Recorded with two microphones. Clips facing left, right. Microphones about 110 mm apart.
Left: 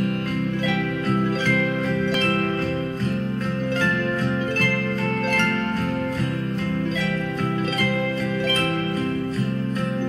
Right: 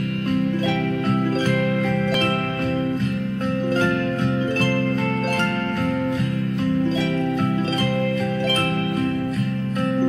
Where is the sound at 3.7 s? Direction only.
35° right (ahead or behind).